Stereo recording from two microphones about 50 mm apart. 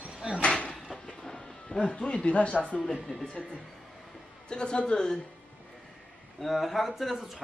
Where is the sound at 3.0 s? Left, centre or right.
Centre.